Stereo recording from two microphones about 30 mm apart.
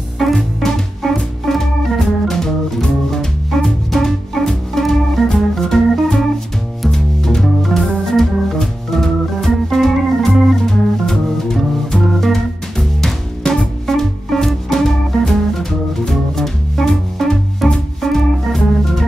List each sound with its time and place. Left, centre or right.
0.2 s music: centre
1.0 s music: centre
1.4 s organ: centre
7.2 s organ: centre
10.6 s music: centre
13.8 s music: centre